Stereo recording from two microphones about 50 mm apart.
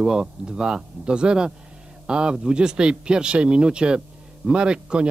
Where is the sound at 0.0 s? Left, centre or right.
Centre.